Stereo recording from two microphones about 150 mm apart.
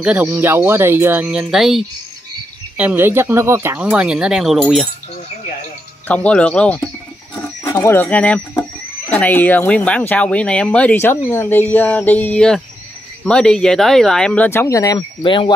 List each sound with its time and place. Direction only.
0.0 s speech: 10° right (ahead or behind)
2.8 s speech: 10° right (ahead or behind)
6.0 s speech: 10° left (ahead or behind)
15.0 s speech: 35° left (ahead or behind)